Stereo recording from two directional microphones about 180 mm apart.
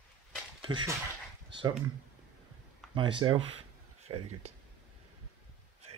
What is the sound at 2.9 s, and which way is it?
Speech, 30° right (ahead or behind).